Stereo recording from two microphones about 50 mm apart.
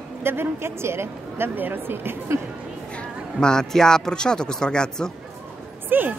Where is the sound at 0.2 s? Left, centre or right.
Right.